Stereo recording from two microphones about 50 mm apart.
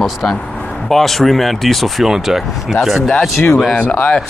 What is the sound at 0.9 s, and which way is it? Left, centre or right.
Speech, centre.